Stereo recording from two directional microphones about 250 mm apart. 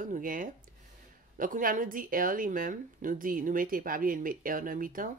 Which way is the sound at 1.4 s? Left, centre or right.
Right.